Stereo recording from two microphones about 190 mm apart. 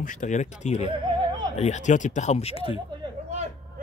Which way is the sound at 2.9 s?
30° right (ahead or behind).